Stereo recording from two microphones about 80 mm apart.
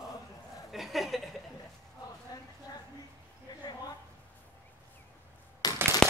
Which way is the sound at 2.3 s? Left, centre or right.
Left.